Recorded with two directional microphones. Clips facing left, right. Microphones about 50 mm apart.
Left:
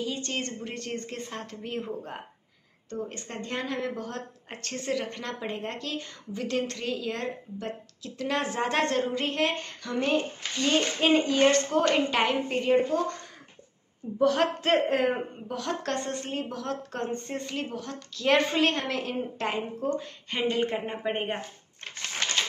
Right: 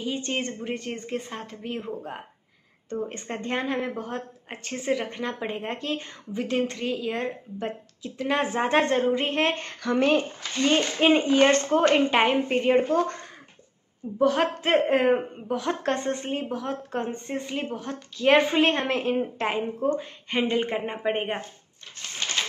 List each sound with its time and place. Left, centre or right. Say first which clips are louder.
0.0 s a woman's voice: right 3 dB; right; by 2.2 s centre
2.9 s speech: right 4 dB; right
9.8 s a woman's voice: right 9 dB; right
10.6 s speech: right 3 dB; right
12.8 s speech: right 4 dB; right
14.1 s a woman's voice: right 1 dB; centre